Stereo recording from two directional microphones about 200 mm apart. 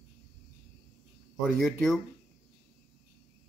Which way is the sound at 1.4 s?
Centre (ahead or behind).